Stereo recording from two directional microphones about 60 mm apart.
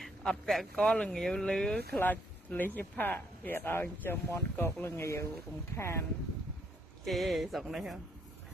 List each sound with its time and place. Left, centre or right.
0.0 s a man's voice: centre
2.0 s speech: left
7.1 s speech: centre